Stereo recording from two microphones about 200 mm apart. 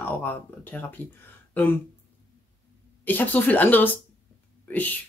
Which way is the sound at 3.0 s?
10° left (ahead or behind).